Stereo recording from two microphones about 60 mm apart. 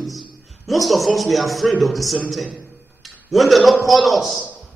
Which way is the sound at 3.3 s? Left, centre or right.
Centre.